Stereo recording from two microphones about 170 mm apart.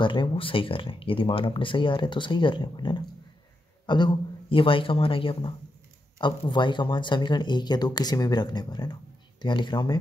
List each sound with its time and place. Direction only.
0.0 s speech: 30° left (ahead or behind)